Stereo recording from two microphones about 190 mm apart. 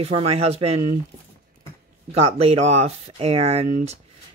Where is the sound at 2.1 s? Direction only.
35° right (ahead or behind).